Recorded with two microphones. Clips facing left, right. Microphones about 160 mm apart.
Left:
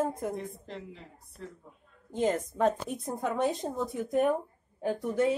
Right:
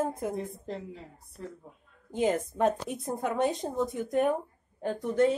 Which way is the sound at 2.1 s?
5° right (ahead or behind).